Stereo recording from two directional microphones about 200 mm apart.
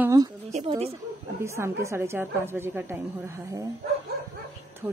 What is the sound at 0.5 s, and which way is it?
Speech, 35° right (ahead or behind).